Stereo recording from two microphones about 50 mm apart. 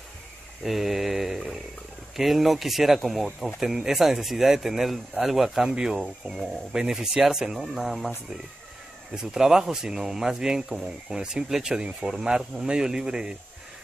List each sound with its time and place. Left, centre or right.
0.7 s mantra: centre
2.1 s speech: centre
9.1 s speech: centre